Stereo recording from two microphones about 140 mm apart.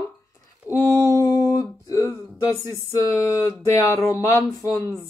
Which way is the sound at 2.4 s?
20° left (ahead or behind).